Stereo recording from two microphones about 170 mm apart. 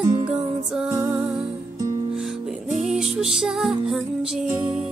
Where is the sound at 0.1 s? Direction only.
35° right (ahead or behind).